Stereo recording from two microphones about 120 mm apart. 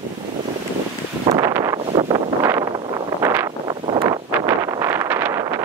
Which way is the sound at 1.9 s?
45° right (ahead or behind).